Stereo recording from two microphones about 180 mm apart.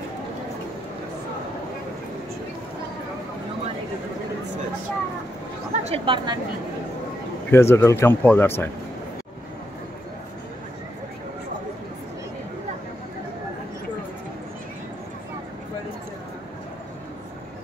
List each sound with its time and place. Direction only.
5.7 s chatter: 40° right (ahead or behind)
6.0 s a woman's voice: 25° right (ahead or behind)
7.5 s speech: 15° left (ahead or behind)